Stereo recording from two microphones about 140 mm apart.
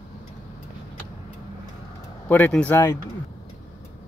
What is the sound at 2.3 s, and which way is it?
Speech, 10° left (ahead or behind).